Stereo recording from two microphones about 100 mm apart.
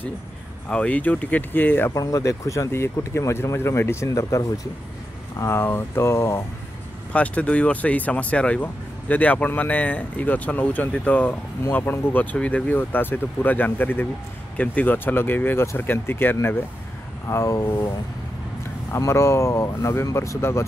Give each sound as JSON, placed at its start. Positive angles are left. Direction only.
{"t": 0.7, "sound": "speech", "side_deg": 15}
{"t": 2.0, "sound": "speech", "side_deg": 35}
{"t": 7.1, "sound": "speech", "side_deg": 15}